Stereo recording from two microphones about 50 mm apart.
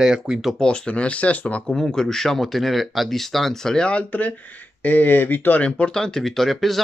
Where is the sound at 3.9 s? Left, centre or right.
Left.